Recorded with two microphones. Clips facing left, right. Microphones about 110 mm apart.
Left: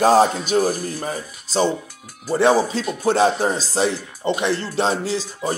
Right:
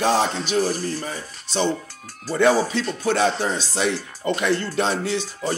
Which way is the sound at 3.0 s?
35° left (ahead or behind).